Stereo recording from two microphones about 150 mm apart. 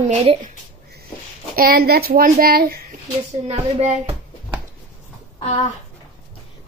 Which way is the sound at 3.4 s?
40° right (ahead or behind).